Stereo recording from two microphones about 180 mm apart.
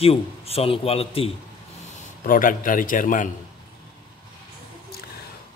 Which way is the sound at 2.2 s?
50° left (ahead or behind).